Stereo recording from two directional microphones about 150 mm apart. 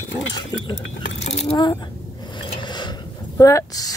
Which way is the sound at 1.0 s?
50° left (ahead or behind).